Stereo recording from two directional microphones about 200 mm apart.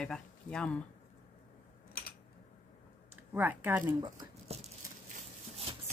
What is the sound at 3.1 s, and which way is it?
Speech, 10° right (ahead or behind).